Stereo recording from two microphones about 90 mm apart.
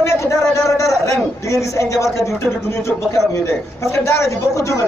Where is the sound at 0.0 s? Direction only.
35° left (ahead or behind).